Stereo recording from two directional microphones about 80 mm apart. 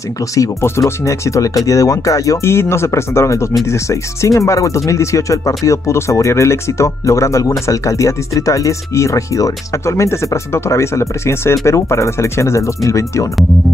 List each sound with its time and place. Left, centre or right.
0.3 s speech: left